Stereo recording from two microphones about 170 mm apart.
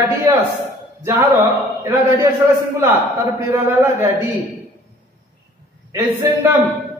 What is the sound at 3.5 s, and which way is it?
Speech, 15° right (ahead or behind).